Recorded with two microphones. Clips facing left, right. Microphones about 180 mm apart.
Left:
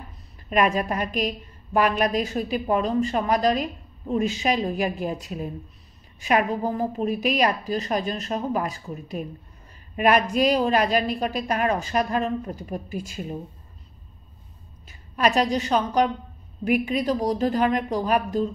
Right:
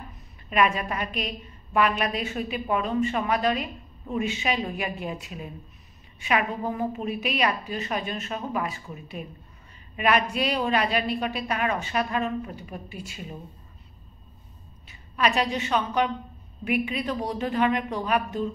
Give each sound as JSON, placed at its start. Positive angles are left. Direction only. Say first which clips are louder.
{"t": 0.5, "sound": "a woman's voice", "louder": "left 2 dB", "side_deg": 40}
{"t": 14.9, "sound": "a woman's voice", "louder": "left 3 dB", "side_deg": 40}